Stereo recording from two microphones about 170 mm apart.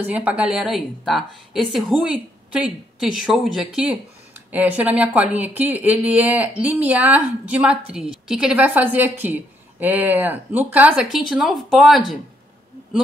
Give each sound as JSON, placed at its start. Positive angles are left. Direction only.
{"t": 0.0, "sound": "a woman's voice", "side_deg": -10}